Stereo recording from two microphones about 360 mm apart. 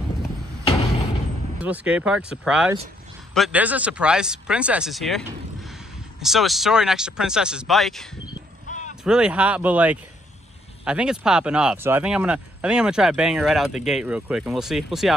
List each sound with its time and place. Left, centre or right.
1.6 s speech: centre
8.3 s a sound: centre
9.0 s speech: centre